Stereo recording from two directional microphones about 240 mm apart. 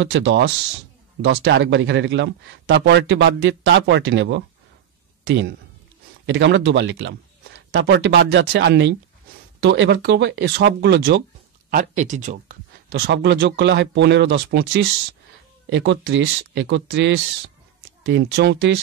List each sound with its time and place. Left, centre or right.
0.0 s a man's voice: right
11.7 s speech: right
12.9 s speech: right